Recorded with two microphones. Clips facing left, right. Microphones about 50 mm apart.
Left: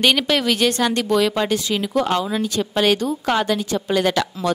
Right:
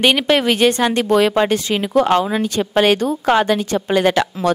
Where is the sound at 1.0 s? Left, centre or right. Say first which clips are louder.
Right 7 dB; right.